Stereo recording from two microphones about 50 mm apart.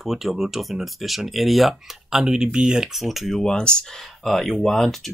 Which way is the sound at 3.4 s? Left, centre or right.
Centre.